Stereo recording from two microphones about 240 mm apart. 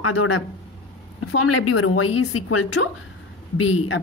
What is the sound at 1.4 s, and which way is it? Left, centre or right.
A woman's voice, left.